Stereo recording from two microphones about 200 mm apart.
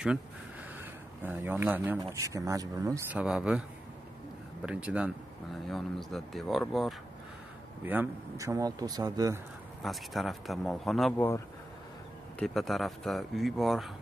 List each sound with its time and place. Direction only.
1.2 s speech: 10° right (ahead or behind)
3.2 s speech: 5° right (ahead or behind)
4.6 s speech: 5° right (ahead or behind)
9.8 s speech: centre (ahead or behind)
12.4 s speech: centre (ahead or behind)